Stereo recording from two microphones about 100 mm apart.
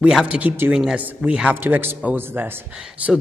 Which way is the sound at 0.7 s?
5° right (ahead or behind).